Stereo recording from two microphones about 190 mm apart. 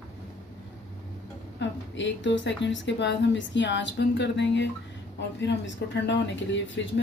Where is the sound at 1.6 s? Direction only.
75° left (ahead or behind).